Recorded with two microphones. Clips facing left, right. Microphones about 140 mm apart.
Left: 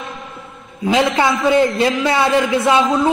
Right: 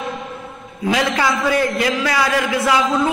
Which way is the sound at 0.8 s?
20° left (ahead or behind).